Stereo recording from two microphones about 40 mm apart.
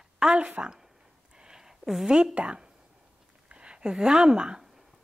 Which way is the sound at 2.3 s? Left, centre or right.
Right.